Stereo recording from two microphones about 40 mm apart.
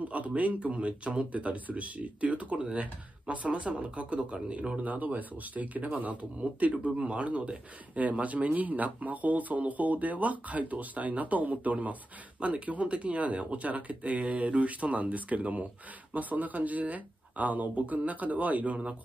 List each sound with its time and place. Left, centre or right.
0.1 s speech: right